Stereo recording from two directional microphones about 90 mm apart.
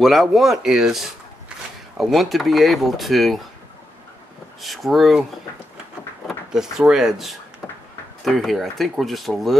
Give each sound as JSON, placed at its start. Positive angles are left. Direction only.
{"t": 0.0, "sound": "speech", "side_deg": 0}
{"t": 4.6, "sound": "speech", "side_deg": 0}
{"t": 6.2, "sound": "speech", "side_deg": -5}
{"t": 7.6, "sound": "a sound", "side_deg": 15}
{"t": 8.2, "sound": "speech", "side_deg": 0}